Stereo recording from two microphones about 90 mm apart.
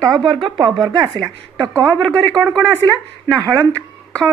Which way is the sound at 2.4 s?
5° right (ahead or behind).